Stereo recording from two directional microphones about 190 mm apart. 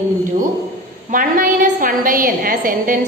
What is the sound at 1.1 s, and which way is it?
A woman's voice, 45° right (ahead or behind).